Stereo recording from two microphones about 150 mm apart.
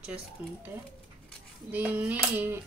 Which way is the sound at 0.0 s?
10° right (ahead or behind).